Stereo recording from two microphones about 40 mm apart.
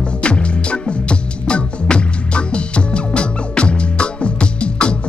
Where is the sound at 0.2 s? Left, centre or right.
Left.